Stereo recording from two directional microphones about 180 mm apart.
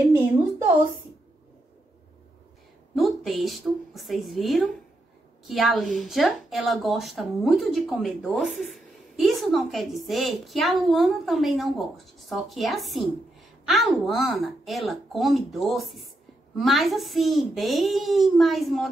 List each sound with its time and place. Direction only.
3.0 s a woman's voice: centre (ahead or behind)